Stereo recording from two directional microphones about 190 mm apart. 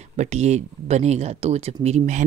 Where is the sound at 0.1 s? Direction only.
35° right (ahead or behind).